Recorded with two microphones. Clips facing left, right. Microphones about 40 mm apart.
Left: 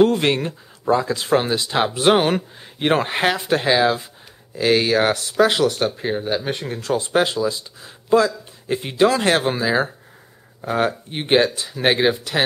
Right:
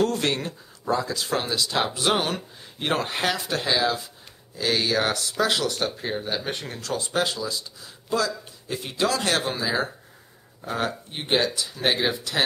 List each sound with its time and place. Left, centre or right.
0.0 s speech: left
6.8 s speech: left